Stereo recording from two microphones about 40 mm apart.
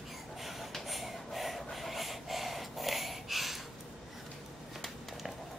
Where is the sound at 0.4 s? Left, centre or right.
Centre.